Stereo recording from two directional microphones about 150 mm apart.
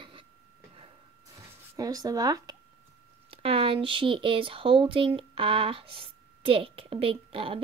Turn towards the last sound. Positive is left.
turn(degrees=-35)  # may be behind; listen again after turning